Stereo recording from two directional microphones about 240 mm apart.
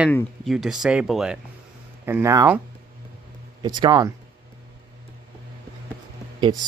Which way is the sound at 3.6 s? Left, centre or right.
Centre.